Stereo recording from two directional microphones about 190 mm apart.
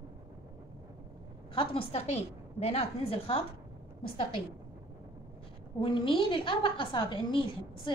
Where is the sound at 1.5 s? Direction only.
30° left (ahead or behind).